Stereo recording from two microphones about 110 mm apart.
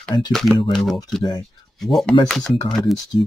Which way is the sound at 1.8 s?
Centre (ahead or behind).